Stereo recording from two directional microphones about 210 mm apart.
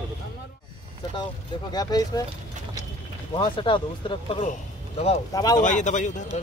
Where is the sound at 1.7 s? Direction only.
20° left (ahead or behind).